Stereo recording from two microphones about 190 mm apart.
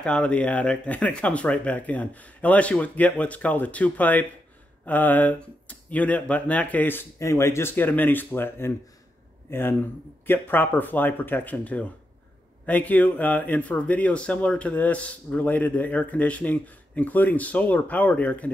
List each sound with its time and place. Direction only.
0.0 s speech: 5° left (ahead or behind)